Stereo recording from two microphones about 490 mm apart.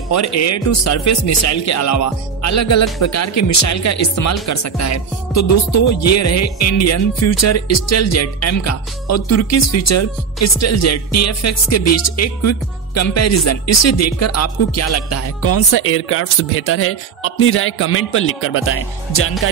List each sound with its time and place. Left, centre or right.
0.1 s speech: left